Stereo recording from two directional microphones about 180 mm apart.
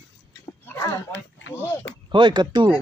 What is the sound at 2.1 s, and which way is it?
Speech, 25° right (ahead or behind).